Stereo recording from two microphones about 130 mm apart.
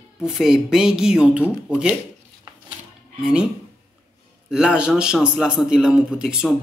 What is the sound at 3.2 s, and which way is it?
Speech, 5° right (ahead or behind).